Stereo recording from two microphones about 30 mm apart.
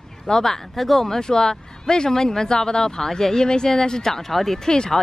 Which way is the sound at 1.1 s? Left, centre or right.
Left.